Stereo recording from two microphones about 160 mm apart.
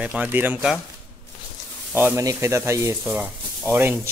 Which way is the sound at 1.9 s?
10° right (ahead or behind).